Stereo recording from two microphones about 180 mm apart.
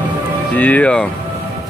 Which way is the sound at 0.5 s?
10° left (ahead or behind).